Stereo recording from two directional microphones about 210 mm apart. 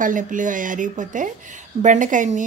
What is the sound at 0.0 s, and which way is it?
A woman's voice, 40° right (ahead or behind).